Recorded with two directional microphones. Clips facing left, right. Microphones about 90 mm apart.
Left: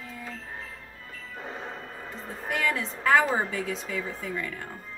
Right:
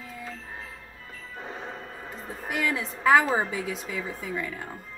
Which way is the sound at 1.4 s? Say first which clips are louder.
Even; centre (ahead or behind).